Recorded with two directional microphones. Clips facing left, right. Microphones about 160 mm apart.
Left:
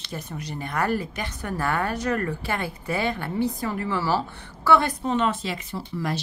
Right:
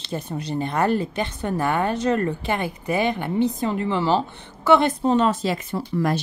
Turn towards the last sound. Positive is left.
turn(degrees=-50)  # may be behind; listen again after turning